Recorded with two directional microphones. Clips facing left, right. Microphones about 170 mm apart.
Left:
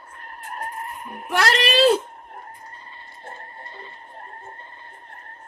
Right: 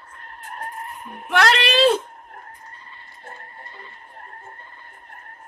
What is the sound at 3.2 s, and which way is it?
Music, 25° left (ahead or behind).